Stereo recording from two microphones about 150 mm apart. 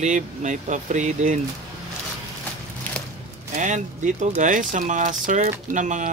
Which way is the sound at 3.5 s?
55° right (ahead or behind).